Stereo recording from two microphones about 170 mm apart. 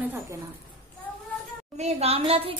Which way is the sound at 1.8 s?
35° right (ahead or behind).